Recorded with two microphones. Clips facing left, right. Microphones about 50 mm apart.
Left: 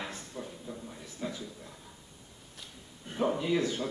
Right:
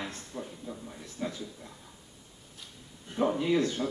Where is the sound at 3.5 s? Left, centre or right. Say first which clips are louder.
Right 2 dB; centre.